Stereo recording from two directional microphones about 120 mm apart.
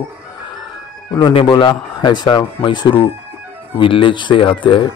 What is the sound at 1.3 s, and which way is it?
Speech, 45° left (ahead or behind).